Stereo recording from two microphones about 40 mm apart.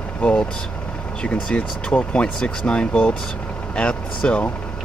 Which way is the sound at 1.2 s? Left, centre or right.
Left.